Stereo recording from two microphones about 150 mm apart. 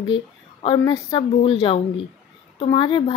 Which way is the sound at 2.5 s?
35° left (ahead or behind).